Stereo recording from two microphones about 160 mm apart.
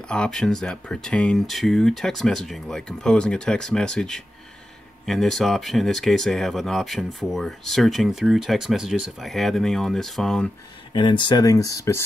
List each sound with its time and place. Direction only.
0.1 s speech: 5° left (ahead or behind)
10.9 s speech: 30° left (ahead or behind)